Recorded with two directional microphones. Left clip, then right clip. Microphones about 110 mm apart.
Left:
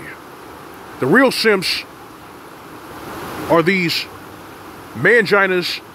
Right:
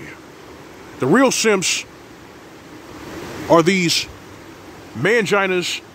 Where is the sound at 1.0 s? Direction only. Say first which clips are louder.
Left 2 dB; 5° right (ahead or behind).